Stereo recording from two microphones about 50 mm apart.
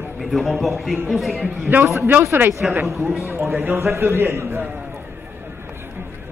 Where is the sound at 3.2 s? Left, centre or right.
Right.